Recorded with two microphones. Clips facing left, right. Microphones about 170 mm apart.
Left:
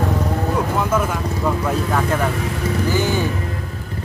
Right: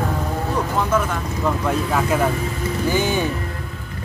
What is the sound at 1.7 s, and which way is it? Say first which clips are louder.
Speech: even; 5° right (ahead or behind).